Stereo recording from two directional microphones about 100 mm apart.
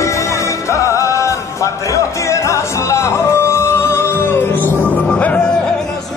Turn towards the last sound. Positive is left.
turn(degrees=10)  # may be behind; listen again after turning